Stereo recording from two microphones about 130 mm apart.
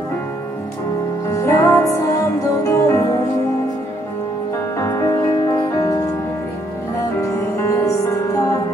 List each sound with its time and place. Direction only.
1.3 s music: 20° left (ahead or behind)
4.7 s music: 20° left (ahead or behind)
7.2 s music: 20° left (ahead or behind)